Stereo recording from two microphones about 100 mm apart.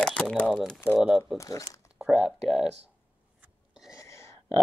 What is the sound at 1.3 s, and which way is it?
Speech, 35° left (ahead or behind).